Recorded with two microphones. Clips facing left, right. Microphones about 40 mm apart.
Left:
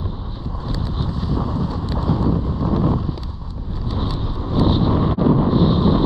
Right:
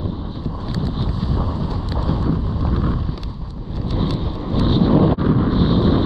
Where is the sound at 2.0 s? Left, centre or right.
Right.